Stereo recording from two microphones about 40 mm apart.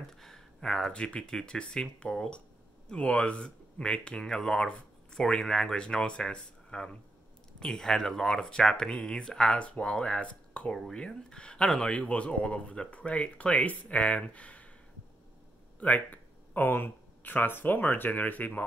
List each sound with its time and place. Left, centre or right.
0.6 s speech: centre
9.6 s speech: left
10.9 s speech: centre
12.1 s speech: left
15.8 s a sound: left
16.6 s speech: left